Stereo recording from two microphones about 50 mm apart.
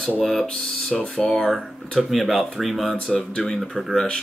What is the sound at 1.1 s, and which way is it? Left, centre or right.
Speech, centre.